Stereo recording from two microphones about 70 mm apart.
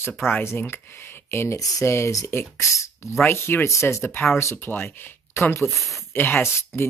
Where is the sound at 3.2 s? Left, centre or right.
Left.